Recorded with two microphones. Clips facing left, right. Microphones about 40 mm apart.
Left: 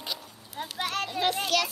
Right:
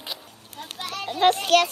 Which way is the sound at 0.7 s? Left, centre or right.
Left.